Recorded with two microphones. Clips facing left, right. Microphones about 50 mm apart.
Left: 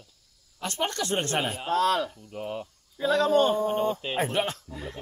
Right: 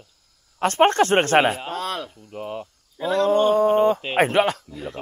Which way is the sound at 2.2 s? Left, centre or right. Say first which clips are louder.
Right 3 dB; centre.